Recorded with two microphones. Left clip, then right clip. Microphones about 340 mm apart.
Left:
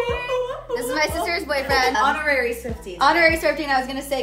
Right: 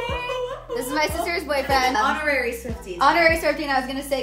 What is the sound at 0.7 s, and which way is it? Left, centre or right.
A woman's voice, centre.